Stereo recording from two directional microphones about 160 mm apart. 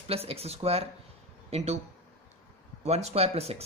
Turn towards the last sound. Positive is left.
turn(degrees=-40)  # may be behind; listen again after turning